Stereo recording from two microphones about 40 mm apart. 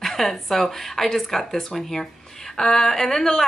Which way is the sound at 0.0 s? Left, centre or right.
Centre.